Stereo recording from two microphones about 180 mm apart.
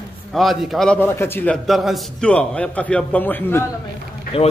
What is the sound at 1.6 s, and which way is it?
A man's voice, centre (ahead or behind).